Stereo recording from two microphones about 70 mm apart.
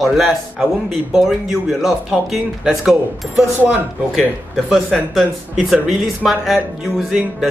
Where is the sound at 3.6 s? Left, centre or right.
Right.